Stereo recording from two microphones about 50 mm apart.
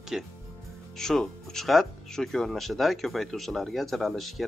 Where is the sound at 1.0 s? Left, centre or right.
Centre.